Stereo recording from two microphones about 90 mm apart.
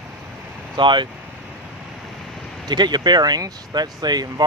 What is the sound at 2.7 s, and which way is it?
Speech, 50° right (ahead or behind).